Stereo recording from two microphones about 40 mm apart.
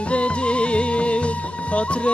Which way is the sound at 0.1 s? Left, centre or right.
Left.